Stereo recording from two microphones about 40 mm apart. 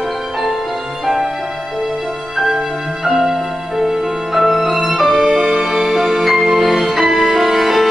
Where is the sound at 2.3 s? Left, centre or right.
Centre.